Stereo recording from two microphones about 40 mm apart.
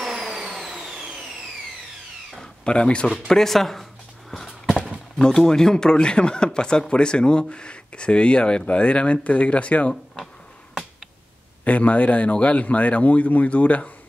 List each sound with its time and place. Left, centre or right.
0.1 s vehicle: centre
2.4 s speech: left
3.3 s speech: centre
4.3 s a sound: centre
5.2 s speech: centre; by 9.9 s left
11.6 s speech: left